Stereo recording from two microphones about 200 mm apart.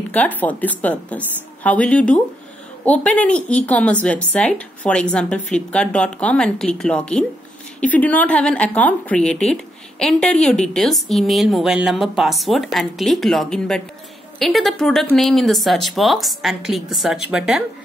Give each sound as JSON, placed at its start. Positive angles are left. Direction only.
{"t": 0.1, "sound": "a woman's voice", "side_deg": 10}